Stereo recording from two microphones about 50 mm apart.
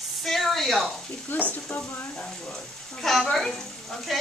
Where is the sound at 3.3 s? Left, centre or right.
Centre.